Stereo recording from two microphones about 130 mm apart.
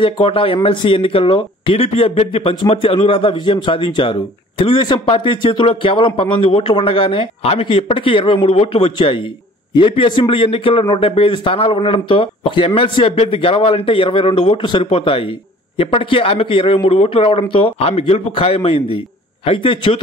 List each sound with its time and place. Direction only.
0.0 s speech: 45° left (ahead or behind)